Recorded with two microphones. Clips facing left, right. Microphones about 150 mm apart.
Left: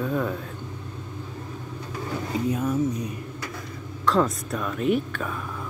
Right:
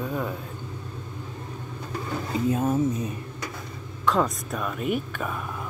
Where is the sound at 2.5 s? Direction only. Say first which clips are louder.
Right 2 dB; 30° right (ahead or behind).